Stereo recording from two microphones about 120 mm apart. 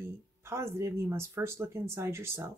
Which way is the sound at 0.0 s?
20° right (ahead or behind).